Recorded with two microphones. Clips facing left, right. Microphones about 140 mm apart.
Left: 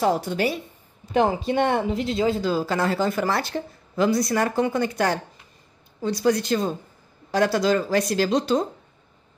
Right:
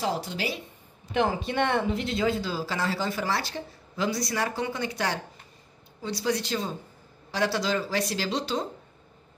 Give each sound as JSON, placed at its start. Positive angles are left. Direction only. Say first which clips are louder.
{"t": 0.0, "sound": "speech", "louder": "left 7 dB", "side_deg": 50}
{"t": 1.4, "sound": "speech", "louder": "left 4 dB", "side_deg": 35}
{"t": 2.4, "sound": "speech", "louder": "left 7 dB", "side_deg": 55}